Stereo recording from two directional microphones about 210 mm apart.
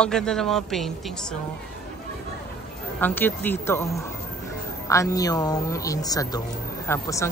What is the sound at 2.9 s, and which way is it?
Speech, 10° left (ahead or behind).